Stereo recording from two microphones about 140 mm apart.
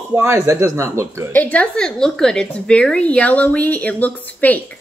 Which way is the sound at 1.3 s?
10° left (ahead or behind).